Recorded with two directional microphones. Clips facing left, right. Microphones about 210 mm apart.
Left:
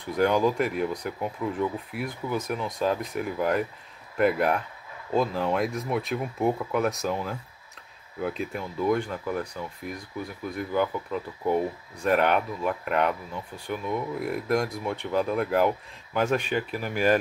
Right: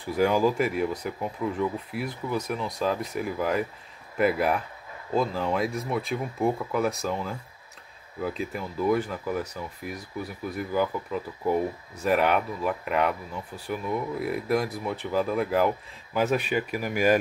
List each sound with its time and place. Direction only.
0.0 s speech: 5° right (ahead or behind)
10.4 s speech: 5° right (ahead or behind)